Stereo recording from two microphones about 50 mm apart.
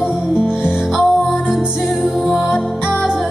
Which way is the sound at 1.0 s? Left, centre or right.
Centre.